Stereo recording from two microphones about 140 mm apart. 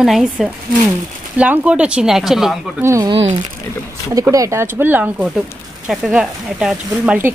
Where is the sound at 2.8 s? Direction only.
20° right (ahead or behind).